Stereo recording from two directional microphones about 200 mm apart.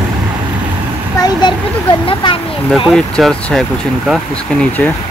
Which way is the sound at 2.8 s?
Centre (ahead or behind).